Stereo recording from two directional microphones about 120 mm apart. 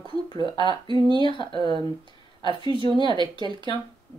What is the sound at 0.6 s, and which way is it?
Speech, 40° right (ahead or behind).